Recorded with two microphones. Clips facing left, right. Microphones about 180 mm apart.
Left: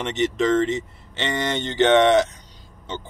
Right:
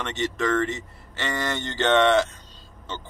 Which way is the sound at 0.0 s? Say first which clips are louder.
Left 5 dB; 20° left (ahead or behind).